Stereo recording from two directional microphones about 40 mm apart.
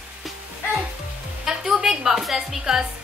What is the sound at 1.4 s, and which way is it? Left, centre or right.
A woman's voice, centre.